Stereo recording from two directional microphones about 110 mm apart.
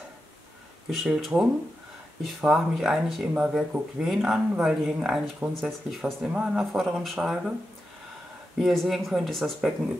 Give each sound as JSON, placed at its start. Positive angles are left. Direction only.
{"t": 0.8, "sound": "speech", "side_deg": -5}
{"t": 8.5, "sound": "speech", "side_deg": -5}